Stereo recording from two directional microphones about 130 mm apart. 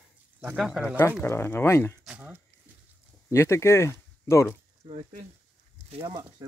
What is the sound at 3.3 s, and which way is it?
Speech, 20° left (ahead or behind).